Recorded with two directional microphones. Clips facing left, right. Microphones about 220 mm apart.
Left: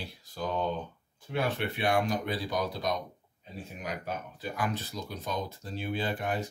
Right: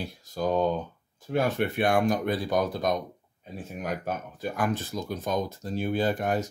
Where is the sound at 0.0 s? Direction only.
45° right (ahead or behind).